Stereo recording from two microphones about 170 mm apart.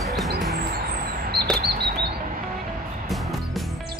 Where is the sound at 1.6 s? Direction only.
70° right (ahead or behind).